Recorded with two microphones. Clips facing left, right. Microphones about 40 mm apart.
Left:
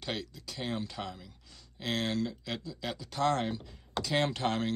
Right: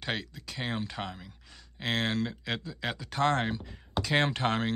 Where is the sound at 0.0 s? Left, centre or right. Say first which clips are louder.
Right 3 dB; right.